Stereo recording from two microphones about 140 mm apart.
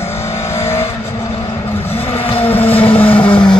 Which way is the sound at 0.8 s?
50° left (ahead or behind).